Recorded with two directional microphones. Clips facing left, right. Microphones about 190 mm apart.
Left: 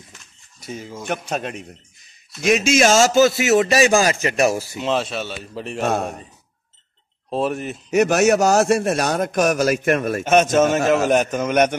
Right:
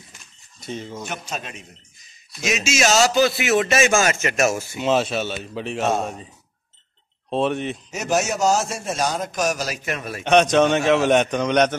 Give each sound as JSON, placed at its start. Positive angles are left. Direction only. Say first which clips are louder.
{"t": 0.6, "sound": "speech", "louder": "right 1 dB", "side_deg": 10}
{"t": 1.0, "sound": "a man's voice", "louder": "left 6 dB", "side_deg": 55}
{"t": 4.7, "sound": "speech", "louder": "right 2 dB", "side_deg": 0}
{"t": 7.2, "sound": "speech", "louder": "right 1 dB", "side_deg": 0}
{"t": 7.9, "sound": "a man's voice", "louder": "left 9 dB", "side_deg": 65}
{"t": 10.2, "sound": "speech", "louder": "right 1 dB", "side_deg": 5}